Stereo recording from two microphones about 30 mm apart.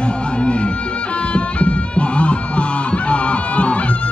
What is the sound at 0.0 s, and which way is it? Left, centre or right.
Music, left.